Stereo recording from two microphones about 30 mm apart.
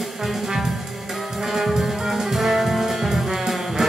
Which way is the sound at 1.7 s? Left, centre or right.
Centre.